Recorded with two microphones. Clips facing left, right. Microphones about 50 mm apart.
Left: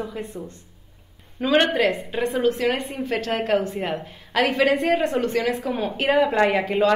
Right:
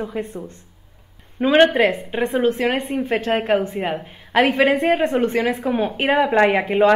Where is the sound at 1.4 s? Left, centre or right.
Right.